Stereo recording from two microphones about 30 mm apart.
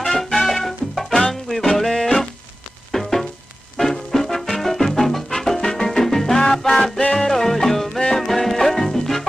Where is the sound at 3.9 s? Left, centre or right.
Centre.